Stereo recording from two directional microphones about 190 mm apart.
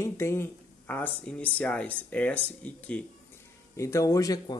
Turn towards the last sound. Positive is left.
turn(degrees=20)  # may be behind; listen again after turning